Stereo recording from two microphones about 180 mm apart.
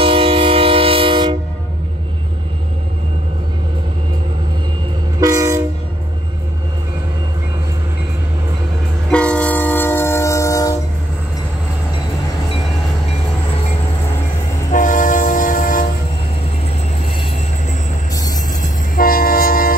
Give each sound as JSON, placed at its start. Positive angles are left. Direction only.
{"t": 0.0, "sound": "train", "side_deg": -30}
{"t": 5.2, "sound": "train", "side_deg": -20}
{"t": 9.1, "sound": "train", "side_deg": 5}
{"t": 14.7, "sound": "train", "side_deg": 45}
{"t": 18.1, "sound": "music", "side_deg": 20}
{"t": 18.6, "sound": "train", "side_deg": 55}